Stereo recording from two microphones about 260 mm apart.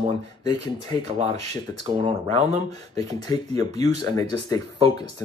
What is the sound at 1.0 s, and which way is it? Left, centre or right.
Speech, right.